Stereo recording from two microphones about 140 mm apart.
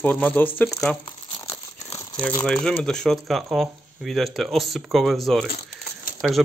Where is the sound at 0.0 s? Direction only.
10° left (ahead or behind).